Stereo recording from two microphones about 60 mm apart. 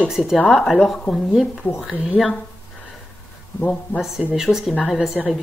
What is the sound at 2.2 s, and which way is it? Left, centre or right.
Speech, centre.